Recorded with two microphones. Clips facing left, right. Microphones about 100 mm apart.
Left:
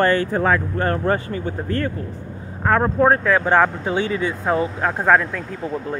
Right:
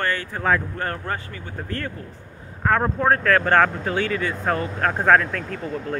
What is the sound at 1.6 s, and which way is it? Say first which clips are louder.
Speech: left 3 dB; 20° left (ahead or behind).